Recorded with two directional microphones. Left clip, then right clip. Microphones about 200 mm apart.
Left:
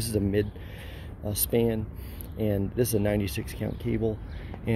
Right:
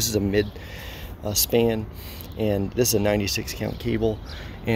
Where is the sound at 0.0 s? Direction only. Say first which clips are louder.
Right 5 dB; centre (ahead or behind).